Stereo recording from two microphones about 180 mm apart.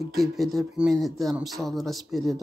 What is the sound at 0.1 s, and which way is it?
Speech, centre (ahead or behind).